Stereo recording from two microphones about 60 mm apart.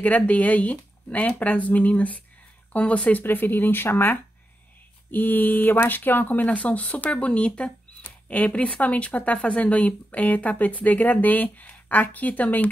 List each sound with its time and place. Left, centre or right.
0.0 s speech: left